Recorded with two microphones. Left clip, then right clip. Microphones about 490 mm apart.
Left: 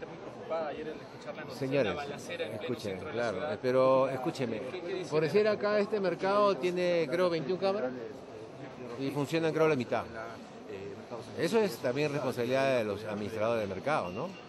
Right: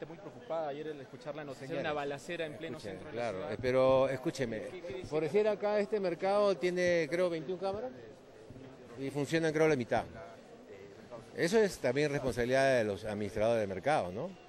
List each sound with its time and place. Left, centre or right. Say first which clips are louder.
1.7 s speech: left 4 dB; centre
3.2 s a man's voice: left 3 dB; right
9.0 s a man's voice: left 1 dB; right
11.3 s a man's voice: even; right